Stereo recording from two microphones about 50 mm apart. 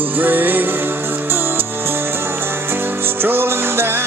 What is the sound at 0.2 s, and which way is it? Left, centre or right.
Music, right.